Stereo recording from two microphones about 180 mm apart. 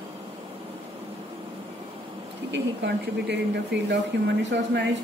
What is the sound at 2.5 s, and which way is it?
Speech, 75° right (ahead or behind).